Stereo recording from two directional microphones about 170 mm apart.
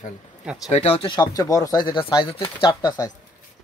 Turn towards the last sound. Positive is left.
turn(degrees=20)  # may be behind; listen again after turning